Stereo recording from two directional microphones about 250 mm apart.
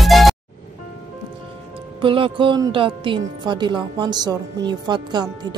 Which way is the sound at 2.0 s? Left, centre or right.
Right.